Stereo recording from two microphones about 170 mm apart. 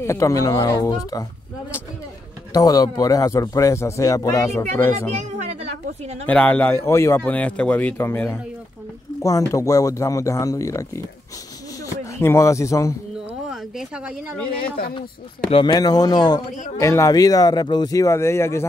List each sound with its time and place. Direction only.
0.0 s speech: 15° left (ahead or behind)
2.5 s speech: 20° left (ahead or behind)
6.2 s a man's voice: 10° left (ahead or behind)
13.5 s speech: 5° right (ahead or behind)
15.5 s speech: 25° left (ahead or behind)